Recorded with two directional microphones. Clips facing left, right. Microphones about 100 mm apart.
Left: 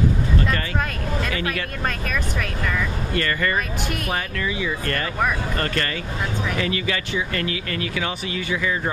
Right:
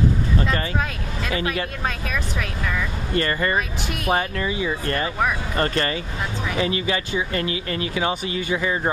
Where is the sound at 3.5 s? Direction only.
Centre (ahead or behind).